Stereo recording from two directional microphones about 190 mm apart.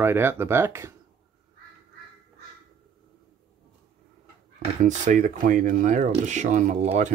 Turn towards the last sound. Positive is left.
turn(degrees=-40)  # may be behind; listen again after turning